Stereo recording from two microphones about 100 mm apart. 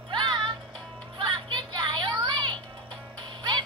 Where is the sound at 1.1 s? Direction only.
55° right (ahead or behind).